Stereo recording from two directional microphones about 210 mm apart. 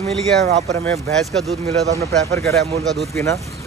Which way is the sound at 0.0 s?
30° right (ahead or behind).